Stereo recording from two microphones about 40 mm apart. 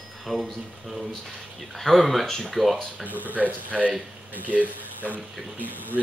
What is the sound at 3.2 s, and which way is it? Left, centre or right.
Speech, right.